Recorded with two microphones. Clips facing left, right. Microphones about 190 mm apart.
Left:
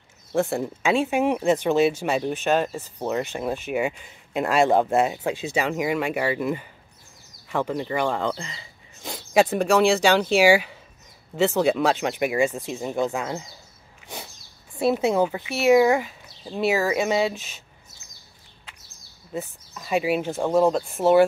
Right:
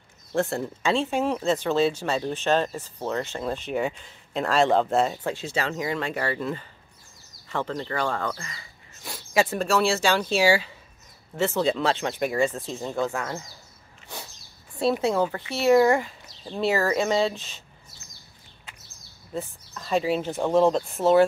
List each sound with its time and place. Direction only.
0.3 s speech: 10° left (ahead or behind)
14.8 s speech: 15° left (ahead or behind)
19.3 s speech: 10° left (ahead or behind)